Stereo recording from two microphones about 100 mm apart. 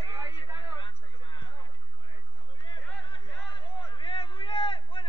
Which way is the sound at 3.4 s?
55° left (ahead or behind).